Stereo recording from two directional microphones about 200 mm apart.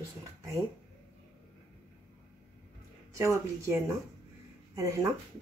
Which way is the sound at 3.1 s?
15° right (ahead or behind).